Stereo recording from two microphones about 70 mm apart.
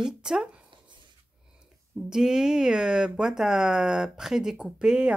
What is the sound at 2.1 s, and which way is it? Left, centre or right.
Speech, centre.